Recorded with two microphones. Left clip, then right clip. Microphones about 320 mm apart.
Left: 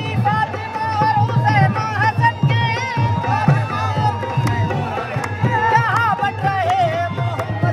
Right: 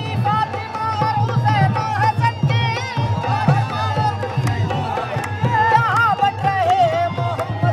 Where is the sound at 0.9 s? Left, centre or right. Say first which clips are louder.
Left 5 dB; centre.